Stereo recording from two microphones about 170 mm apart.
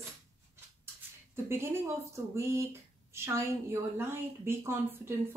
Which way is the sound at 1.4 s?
15° right (ahead or behind).